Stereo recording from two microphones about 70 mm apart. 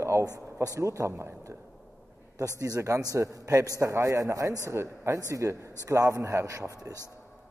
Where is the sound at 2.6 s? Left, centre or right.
Right.